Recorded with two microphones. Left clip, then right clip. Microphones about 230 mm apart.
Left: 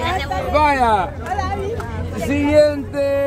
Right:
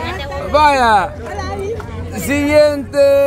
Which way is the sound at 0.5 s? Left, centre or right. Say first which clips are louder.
Right 5 dB; right.